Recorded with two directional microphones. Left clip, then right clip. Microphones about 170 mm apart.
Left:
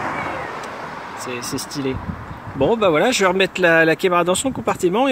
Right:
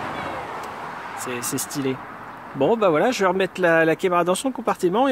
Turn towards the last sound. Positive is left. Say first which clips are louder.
# left 2 dB
turn(degrees=-10)  # may be behind; listen again after turning